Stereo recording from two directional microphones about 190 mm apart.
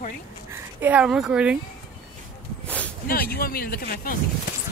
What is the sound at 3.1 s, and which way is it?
Speech, 50° left (ahead or behind).